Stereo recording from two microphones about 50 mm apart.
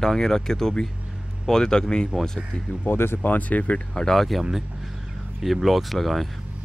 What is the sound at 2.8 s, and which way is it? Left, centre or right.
Speech, left.